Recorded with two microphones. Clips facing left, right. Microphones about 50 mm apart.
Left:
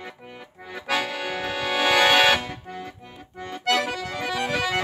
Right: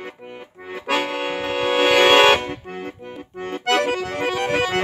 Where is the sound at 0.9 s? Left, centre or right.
Right.